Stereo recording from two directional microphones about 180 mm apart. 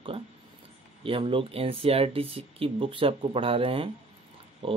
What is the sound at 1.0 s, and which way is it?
Speech, 30° right (ahead or behind).